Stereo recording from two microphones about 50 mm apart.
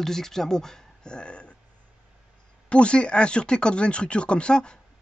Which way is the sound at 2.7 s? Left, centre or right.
Left.